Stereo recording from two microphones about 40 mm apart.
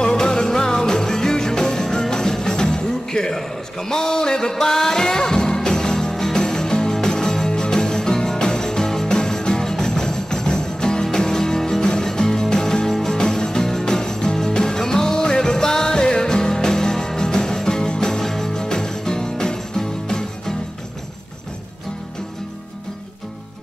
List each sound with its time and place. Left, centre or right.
0.0 s music: centre